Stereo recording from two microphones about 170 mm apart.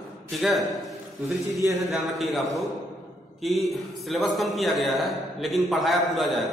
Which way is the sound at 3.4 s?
Centre (ahead or behind).